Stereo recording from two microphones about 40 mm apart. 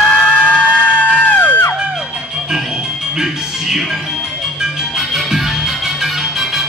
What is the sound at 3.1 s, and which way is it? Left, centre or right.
Music, centre.